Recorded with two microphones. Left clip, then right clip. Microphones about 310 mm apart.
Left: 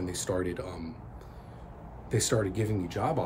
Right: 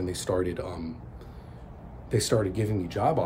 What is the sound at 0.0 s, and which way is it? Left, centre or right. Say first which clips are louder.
Speech: right 4 dB; centre.